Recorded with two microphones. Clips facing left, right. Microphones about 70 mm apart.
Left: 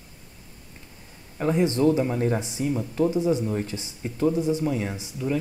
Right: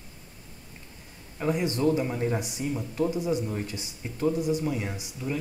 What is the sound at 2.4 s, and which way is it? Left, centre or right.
Speech, left.